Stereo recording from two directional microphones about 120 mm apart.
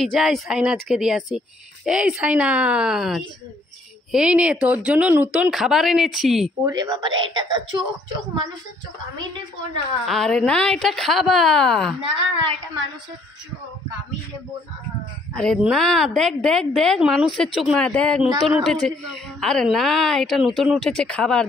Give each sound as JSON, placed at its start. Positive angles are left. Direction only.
{"t": 0.0, "sound": "a woman's voice", "side_deg": 0}
{"t": 6.6, "sound": "a woman's voice", "side_deg": -35}
{"t": 10.0, "sound": "a woman's voice", "side_deg": 5}
{"t": 12.2, "sound": "a woman's voice", "side_deg": -40}
{"t": 15.3, "sound": "a woman's voice", "side_deg": 5}